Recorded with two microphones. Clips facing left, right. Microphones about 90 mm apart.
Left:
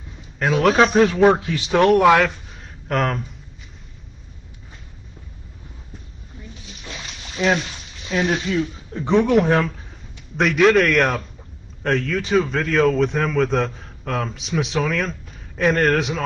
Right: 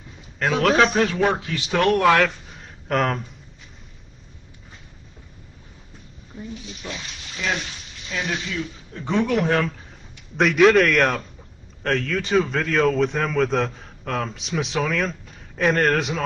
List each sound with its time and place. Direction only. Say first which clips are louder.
0.4 s a man's voice: left 2 dB; 10° left (ahead or behind)
2.2 s a sound: left 1 dB; centre (ahead or behind)
8.1 s speech: left 7 dB; 35° left (ahead or behind)
8.9 s speech: left 5 dB; 20° left (ahead or behind)
10.3 s a man's voice: even; centre (ahead or behind)